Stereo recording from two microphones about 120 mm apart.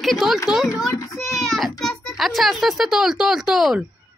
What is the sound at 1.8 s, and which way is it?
A child's voice, centre (ahead or behind).